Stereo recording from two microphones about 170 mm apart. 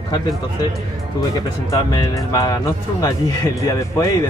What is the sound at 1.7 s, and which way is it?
Speech, 20° left (ahead or behind).